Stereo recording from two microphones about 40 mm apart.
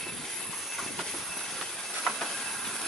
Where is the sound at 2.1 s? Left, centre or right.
Centre.